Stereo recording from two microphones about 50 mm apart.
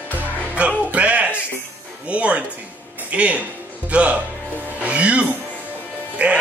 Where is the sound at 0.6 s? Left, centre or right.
Right.